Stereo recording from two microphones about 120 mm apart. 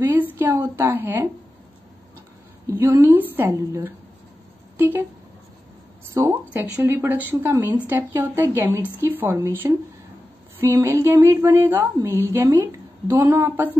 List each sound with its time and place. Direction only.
0.0 s a woman's voice: 15° right (ahead or behind)
2.6 s speech: 20° right (ahead or behind)
6.1 s speech: 20° right (ahead or behind)